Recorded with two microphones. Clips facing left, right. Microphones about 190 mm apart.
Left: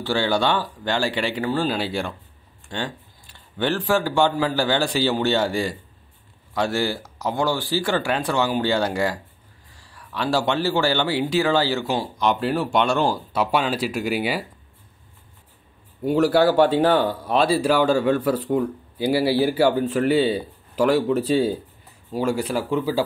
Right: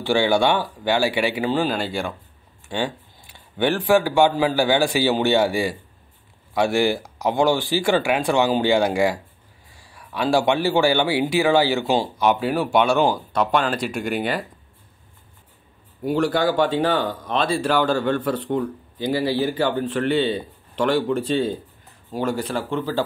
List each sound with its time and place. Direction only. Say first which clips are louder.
0.0 s speech: right 3 dB; 15° right (ahead or behind)
1.7 s speech: even; centre (ahead or behind)
2.7 s speech: right 4 dB; 10° right (ahead or behind)
12.2 s speech: right 2 dB; 5° right (ahead or behind)
16.1 s speech: left 3 dB; 5° left (ahead or behind)